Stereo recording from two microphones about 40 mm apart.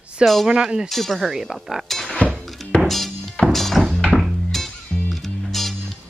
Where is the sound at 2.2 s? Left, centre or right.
Left.